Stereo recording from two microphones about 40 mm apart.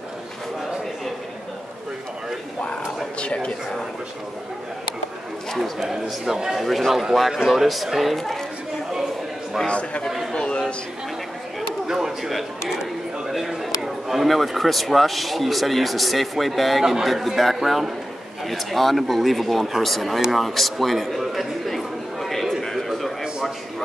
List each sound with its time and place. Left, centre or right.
5.6 s a man's voice: centre
6.6 s a man's voice: centre
9.7 s speech: left
10.3 s a sound: left
11.9 s a man's voice: centre
20.2 s a sound: centre